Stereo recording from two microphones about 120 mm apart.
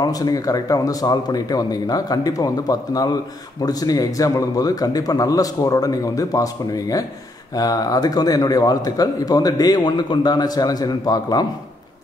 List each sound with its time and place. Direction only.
0.0 s a man's voice: 30° left (ahead or behind)